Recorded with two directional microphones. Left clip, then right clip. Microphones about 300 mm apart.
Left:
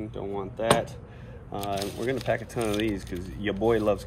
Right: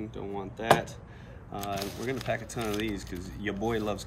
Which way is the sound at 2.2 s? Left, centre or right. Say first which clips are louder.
Left 4 dB; centre.